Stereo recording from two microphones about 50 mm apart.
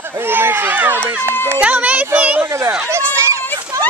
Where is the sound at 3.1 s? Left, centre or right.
Right.